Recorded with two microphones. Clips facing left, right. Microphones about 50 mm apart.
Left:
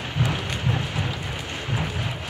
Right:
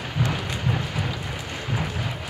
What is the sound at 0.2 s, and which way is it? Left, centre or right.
Rain, centre.